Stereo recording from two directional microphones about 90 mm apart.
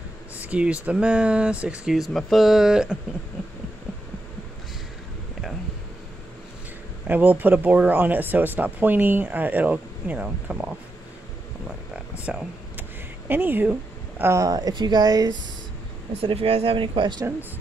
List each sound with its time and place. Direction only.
0.4 s speech: 15° right (ahead or behind)
7.1 s speech: 20° right (ahead or behind)
11.9 s a sound: 15° right (ahead or behind)
13.3 s a woman's voice: 20° right (ahead or behind)
14.3 s speech: 40° right (ahead or behind)
16.2 s speech: 90° right; by 17.2 s 65° right (ahead or behind)